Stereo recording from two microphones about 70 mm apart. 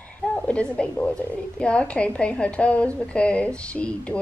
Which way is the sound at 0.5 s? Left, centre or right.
Centre.